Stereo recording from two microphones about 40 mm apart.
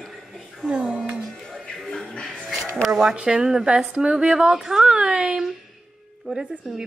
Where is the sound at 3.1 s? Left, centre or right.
Right.